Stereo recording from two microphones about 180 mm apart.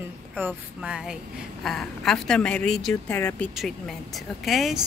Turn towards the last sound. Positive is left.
turn(degrees=0)  # may be behind; listen again after turning